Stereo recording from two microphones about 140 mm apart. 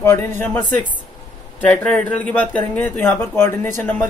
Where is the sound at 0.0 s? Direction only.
20° left (ahead or behind).